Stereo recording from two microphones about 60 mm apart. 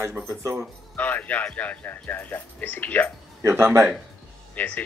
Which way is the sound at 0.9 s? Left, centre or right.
Left.